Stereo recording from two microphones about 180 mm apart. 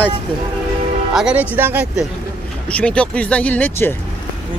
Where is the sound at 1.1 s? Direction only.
5° right (ahead or behind).